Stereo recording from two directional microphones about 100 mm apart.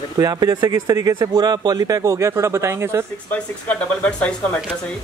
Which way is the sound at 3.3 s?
15° left (ahead or behind).